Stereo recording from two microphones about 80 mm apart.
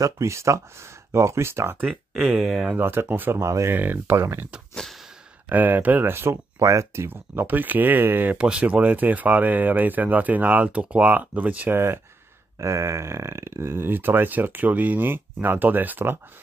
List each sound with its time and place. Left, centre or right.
0.0 s speech: right
2.1 s speech: centre
2.4 s speech: centre
2.7 s speech: right
3.4 s speech: right
3.7 s speech: right
5.5 s speech: right
8.4 s speech: centre
12.5 s speech: right